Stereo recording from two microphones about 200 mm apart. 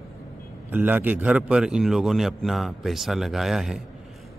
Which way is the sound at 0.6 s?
10° right (ahead or behind).